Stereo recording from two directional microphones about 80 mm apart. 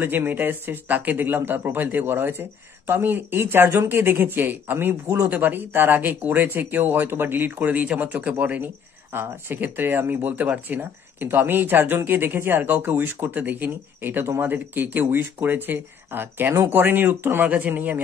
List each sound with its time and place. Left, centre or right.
0.0 s speech: right